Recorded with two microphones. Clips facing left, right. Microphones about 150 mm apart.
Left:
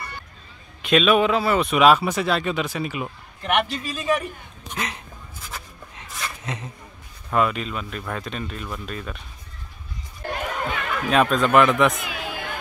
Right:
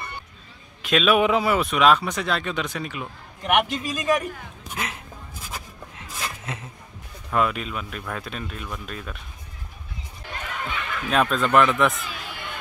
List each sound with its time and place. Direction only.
0.8 s speech: centre (ahead or behind)
1.2 s a man's voice: 15° right (ahead or behind)
1.6 s speech: 5° left (ahead or behind)
3.4 s a man's voice: 15° right (ahead or behind)
4.7 s writing: 5° right (ahead or behind)
7.3 s speech: centre (ahead or behind)
10.2 s chatter: 60° left (ahead or behind)
11.1 s speech: centre (ahead or behind)
11.9 s speech: 90° left